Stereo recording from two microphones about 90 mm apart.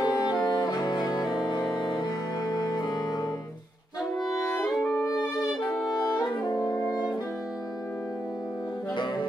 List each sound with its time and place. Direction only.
0.0 s music: 50° left (ahead or behind)
4.6 s music: 5° left (ahead or behind)
6.0 s saxophone: 50° left (ahead or behind)
8.9 s music: 55° left (ahead or behind)